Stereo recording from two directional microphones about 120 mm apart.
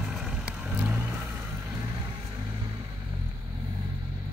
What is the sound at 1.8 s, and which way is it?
Vehicle, 35° right (ahead or behind).